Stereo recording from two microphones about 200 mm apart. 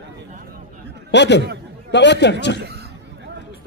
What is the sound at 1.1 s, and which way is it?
A man's voice, 60° left (ahead or behind).